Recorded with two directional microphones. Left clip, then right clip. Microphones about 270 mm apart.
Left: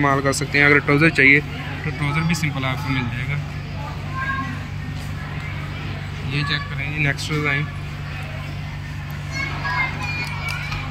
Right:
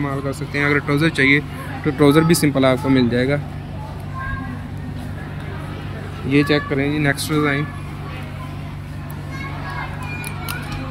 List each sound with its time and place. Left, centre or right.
0.0 s speech: centre
1.9 s speech: right
6.3 s speech: right